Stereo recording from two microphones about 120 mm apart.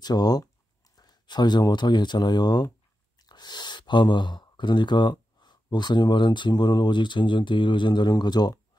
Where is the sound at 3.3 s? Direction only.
35° left (ahead or behind).